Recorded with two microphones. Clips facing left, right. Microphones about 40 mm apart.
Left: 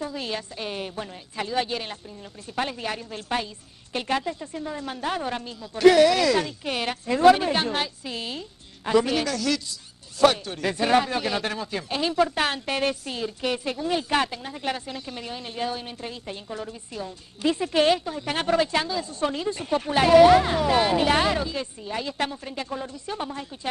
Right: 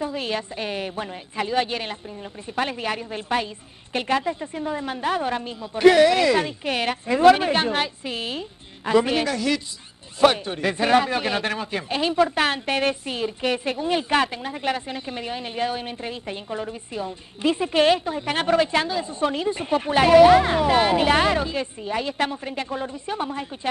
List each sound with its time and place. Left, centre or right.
0.0 s speech: right